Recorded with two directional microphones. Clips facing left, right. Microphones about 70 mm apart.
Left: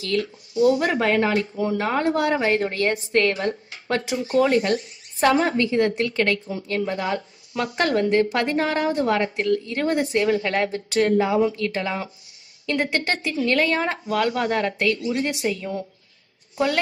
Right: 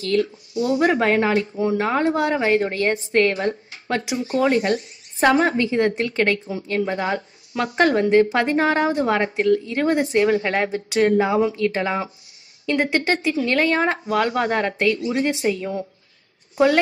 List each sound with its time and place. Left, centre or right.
0.0 s a woman's voice: right
3.9 s a woman's voice: centre
4.3 s a woman's voice: right